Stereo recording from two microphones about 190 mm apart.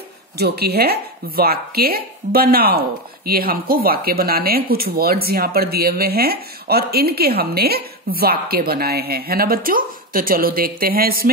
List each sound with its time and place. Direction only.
0.4 s speech: 55° right (ahead or behind)